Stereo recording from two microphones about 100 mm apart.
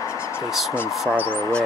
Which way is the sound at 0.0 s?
25° left (ahead or behind).